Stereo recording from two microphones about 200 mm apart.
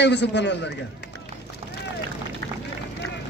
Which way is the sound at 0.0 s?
60° left (ahead or behind).